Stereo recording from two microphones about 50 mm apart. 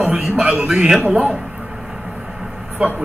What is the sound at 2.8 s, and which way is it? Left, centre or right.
Speech, right.